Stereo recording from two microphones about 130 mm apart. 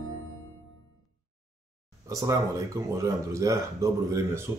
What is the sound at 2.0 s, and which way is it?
Speech, 25° right (ahead or behind).